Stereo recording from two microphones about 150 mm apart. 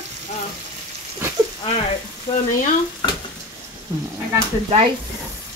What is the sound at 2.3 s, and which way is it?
Frying, 30° left (ahead or behind).